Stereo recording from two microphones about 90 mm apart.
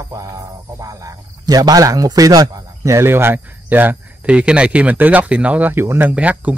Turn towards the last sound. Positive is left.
turn(degrees=-15)  # may be behind; listen again after turning